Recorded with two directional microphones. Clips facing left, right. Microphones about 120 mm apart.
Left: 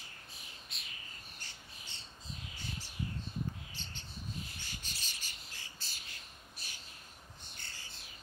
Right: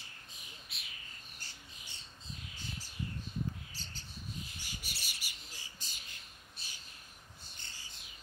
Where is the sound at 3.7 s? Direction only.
40° right (ahead or behind).